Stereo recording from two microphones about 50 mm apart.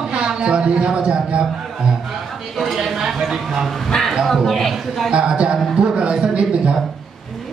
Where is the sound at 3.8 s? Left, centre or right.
Centre.